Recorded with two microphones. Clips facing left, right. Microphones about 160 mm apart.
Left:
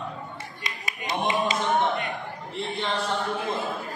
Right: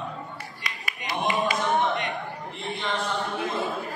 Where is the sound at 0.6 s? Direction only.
20° left (ahead or behind).